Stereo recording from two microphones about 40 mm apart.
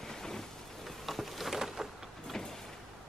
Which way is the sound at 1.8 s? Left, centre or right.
Centre.